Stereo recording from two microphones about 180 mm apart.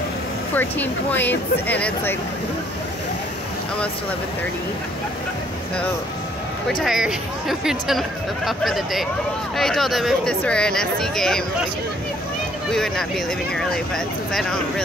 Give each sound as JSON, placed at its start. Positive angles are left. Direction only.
{"t": 0.6, "sound": "speech", "side_deg": 10}
{"t": 6.8, "sound": "speech", "side_deg": -5}
{"t": 12.7, "sound": "speech", "side_deg": 5}